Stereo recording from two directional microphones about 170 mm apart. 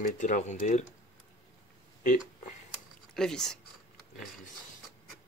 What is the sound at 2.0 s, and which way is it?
Speech, 50° left (ahead or behind).